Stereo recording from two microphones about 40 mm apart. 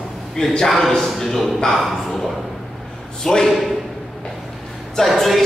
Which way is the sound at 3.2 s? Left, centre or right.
Centre.